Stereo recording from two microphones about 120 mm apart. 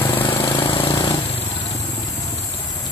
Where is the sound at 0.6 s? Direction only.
45° left (ahead or behind).